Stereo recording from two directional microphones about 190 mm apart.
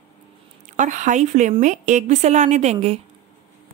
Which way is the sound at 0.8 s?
40° right (ahead or behind).